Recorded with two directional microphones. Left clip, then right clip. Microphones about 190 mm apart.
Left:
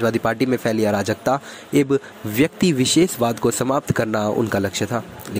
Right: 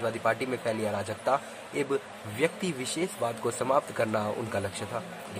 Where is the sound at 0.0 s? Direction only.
35° left (ahead or behind).